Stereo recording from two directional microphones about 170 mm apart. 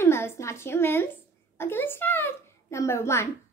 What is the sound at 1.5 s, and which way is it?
A child's voice, 15° left (ahead or behind).